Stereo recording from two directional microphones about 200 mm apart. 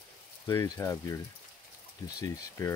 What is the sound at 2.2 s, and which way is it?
Speech, 15° left (ahead or behind).